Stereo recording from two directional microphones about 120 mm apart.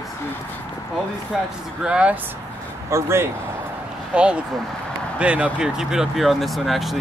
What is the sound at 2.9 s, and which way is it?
Speech, 20° right (ahead or behind).